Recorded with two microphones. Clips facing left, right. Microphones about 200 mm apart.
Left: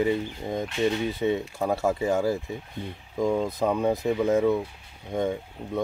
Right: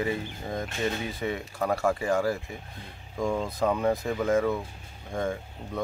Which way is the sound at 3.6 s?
15° left (ahead or behind).